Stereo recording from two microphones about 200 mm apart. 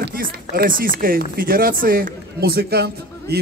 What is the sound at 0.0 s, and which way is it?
Speech, 45° right (ahead or behind).